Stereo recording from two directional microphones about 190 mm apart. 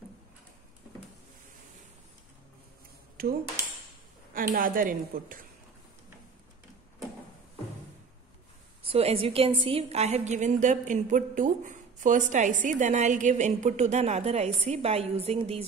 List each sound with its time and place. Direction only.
3.2 s speech: 50° right (ahead or behind)
4.6 s speech: 45° right (ahead or behind)
8.8 s a woman's voice: 30° right (ahead or behind)